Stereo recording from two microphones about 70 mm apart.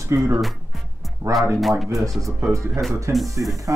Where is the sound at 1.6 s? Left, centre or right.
Centre.